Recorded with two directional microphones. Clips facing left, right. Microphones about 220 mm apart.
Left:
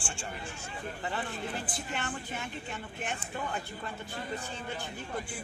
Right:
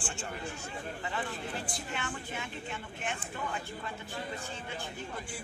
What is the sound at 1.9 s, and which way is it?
Speech, 40° left (ahead or behind).